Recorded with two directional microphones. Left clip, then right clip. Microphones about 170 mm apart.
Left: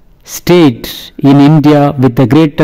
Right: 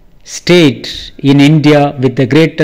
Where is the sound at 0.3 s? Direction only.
30° left (ahead or behind).